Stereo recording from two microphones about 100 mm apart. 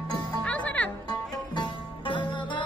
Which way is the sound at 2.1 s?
50° left (ahead or behind).